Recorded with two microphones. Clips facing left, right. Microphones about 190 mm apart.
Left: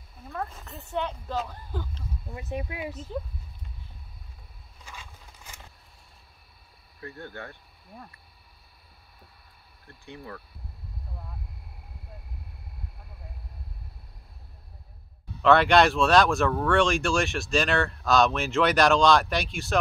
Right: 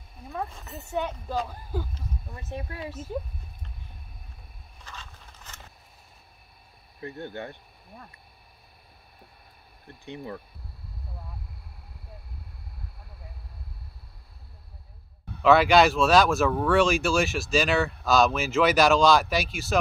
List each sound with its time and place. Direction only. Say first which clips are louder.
0.7 s speech: right 1 dB; 10° right (ahead or behind)
2.3 s speech: left 4 dB; 15° left (ahead or behind)
4.8 s a sound: right 1 dB; 10° left (ahead or behind)
7.0 s speech: right 4 dB; 20° right (ahead or behind)
9.8 s speech: right 4 dB; 20° right (ahead or behind)
15.4 s speech: right 1 dB; 5° right (ahead or behind)